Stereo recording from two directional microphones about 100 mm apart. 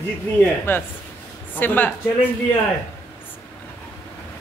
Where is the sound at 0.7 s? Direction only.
20° left (ahead or behind).